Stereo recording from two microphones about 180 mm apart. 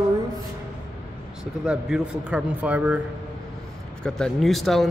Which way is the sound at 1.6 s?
5° right (ahead or behind).